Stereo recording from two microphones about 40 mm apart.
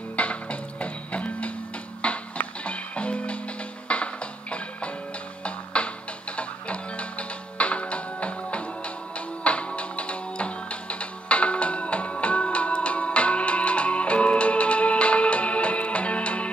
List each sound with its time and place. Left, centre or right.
0.1 s music: left